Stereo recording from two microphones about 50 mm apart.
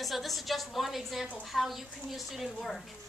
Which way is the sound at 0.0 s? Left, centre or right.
Centre.